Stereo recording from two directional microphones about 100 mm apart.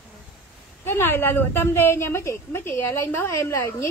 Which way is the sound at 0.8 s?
25° left (ahead or behind).